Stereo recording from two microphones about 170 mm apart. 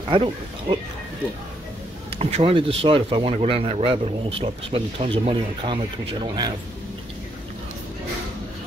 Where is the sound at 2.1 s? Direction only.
35° right (ahead or behind).